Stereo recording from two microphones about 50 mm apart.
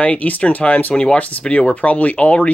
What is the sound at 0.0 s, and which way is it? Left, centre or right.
Speech, left.